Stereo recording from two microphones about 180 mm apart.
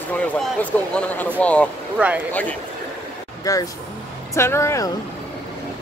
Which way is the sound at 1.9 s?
5° right (ahead or behind).